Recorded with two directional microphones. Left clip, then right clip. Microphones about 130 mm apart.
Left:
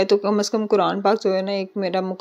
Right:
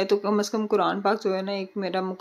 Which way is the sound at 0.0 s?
40° left (ahead or behind).